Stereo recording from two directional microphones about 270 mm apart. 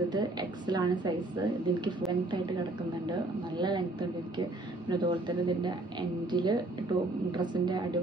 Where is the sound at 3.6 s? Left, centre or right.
Centre.